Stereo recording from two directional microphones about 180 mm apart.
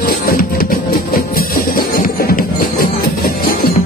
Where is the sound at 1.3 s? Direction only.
55° left (ahead or behind).